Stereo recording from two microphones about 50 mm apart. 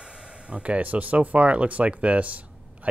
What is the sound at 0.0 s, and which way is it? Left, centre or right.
Speech, right.